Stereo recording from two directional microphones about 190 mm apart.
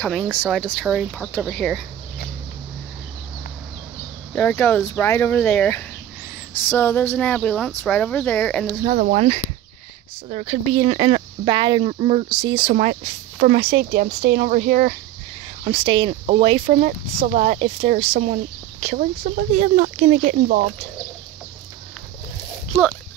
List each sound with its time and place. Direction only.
0.0 s speech: 5° left (ahead or behind)
4.4 s speech: 10° left (ahead or behind)
8.9 s speech: 50° right (ahead or behind)
10.3 s speech: 35° right (ahead or behind)
13.4 s speech: 35° right (ahead or behind)
13.7 s speech: 55° right (ahead or behind)
15.6 s speech: 30° right (ahead or behind)
17.3 s speech: 45° right (ahead or behind)
19.6 s speech: 40° right (ahead or behind)
20.2 s speech: 55° right (ahead or behind)